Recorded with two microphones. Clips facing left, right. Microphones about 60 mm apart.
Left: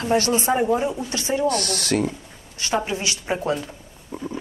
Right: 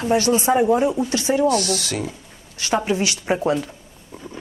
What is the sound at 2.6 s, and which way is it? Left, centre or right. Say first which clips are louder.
Speech: right 3 dB; centre.